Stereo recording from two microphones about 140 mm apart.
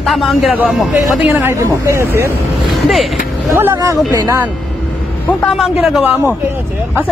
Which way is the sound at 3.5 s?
20° right (ahead or behind).